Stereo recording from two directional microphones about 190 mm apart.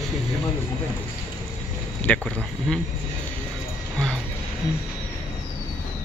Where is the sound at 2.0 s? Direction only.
5° left (ahead or behind).